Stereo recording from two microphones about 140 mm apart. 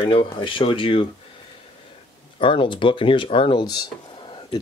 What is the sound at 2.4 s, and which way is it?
Speech, 35° left (ahead or behind).